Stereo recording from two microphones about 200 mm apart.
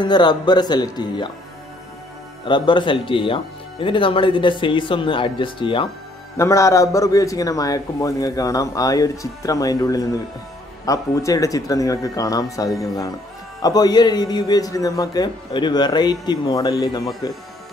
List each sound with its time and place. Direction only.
0.0 s a man's voice: 20° left (ahead or behind)
2.4 s a man's voice: 25° left (ahead or behind)
6.3 s a man's voice: 15° left (ahead or behind)